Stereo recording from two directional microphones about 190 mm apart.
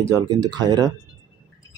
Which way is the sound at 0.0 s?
20° right (ahead or behind).